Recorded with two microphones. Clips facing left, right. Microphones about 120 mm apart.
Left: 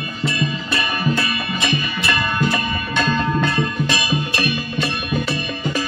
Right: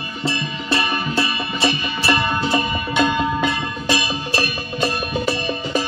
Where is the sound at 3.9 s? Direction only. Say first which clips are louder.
Even; 30° right (ahead or behind).